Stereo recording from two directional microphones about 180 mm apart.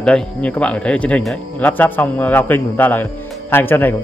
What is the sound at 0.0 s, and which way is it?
Speech, 5° left (ahead or behind).